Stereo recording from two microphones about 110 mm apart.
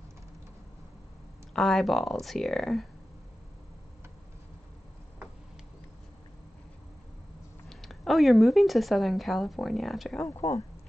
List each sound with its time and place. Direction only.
1.5 s speech: 5° left (ahead or behind)
7.7 s speech: centre (ahead or behind)
10.2 s speech: 25° left (ahead or behind)